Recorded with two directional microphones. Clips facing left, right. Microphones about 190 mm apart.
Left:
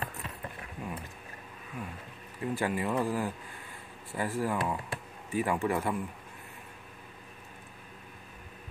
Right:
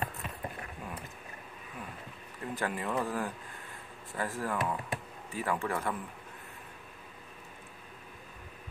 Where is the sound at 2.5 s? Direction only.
10° left (ahead or behind).